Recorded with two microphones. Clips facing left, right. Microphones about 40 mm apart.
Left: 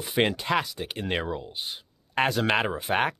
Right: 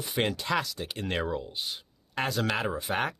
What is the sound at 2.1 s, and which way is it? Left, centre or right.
Speech, left.